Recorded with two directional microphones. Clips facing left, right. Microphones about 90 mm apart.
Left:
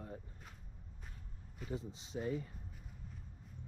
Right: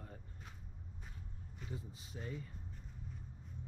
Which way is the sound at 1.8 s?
25° left (ahead or behind).